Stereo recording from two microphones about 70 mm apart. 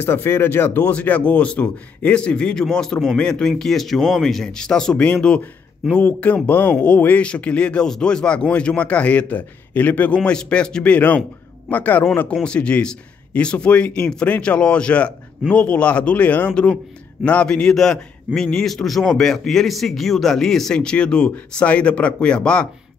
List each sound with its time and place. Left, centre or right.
0.0 s speech: left
0.9 s a man's voice: left
12.4 s a man's voice: centre